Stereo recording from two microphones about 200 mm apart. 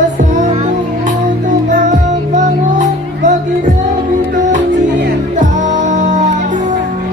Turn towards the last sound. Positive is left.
turn(degrees=-35)  # may be behind; listen again after turning